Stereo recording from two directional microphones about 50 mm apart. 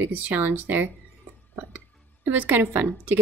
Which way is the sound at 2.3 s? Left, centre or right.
Right.